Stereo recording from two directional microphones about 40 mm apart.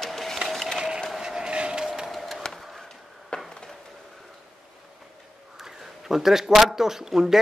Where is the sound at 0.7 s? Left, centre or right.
Centre.